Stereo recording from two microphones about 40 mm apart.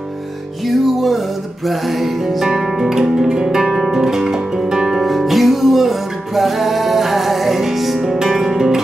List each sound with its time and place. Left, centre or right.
0.7 s music: centre